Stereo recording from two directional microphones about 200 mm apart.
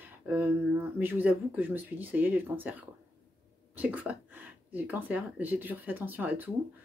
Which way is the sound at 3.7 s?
10° right (ahead or behind).